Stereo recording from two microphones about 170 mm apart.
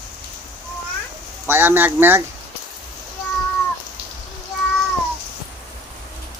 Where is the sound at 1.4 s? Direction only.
10° right (ahead or behind).